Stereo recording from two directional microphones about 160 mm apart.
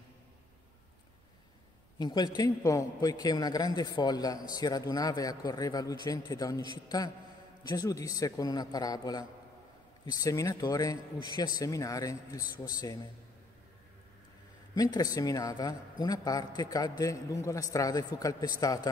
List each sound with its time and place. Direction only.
2.0 s a man's voice: 25° left (ahead or behind)
7.6 s a man's voice: 25° left (ahead or behind)
14.8 s a man's voice: 25° left (ahead or behind)